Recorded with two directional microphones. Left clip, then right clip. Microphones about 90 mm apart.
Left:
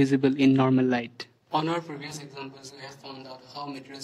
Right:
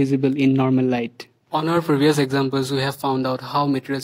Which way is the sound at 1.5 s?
60° right (ahead or behind).